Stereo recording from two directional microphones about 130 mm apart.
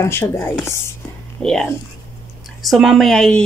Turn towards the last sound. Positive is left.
turn(degrees=5)  # may be behind; listen again after turning